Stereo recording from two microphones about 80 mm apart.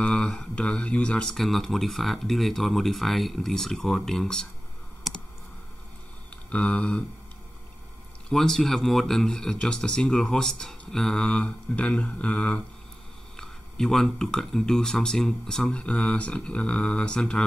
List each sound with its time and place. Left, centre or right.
0.0 s speech: centre
1.3 s speech: centre
6.3 s a sound: centre
8.3 s speech: centre
13.4 s speech: centre